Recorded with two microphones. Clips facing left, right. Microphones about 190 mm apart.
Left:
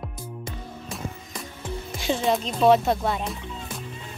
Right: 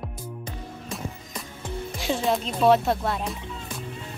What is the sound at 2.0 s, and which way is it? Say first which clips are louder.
Speech: left 1 dB; centre (ahead or behind).